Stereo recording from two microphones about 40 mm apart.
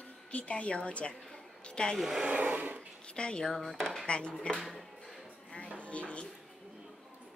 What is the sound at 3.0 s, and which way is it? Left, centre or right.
Speech, left.